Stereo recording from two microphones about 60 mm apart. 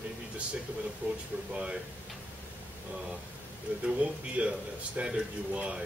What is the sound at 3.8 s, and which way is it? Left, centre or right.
A man's voice, right.